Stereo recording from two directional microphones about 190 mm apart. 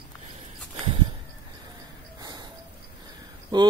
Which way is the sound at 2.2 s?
20° right (ahead or behind).